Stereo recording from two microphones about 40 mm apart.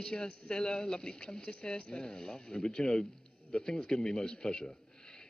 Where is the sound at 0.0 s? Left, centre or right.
Centre.